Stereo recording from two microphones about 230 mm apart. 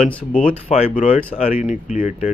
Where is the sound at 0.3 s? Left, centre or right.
Left.